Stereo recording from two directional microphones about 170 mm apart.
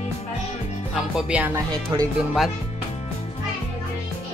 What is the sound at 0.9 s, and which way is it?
Speech, 5° right (ahead or behind).